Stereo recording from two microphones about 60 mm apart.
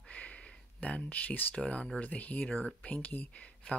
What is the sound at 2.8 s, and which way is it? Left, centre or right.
Speech, left.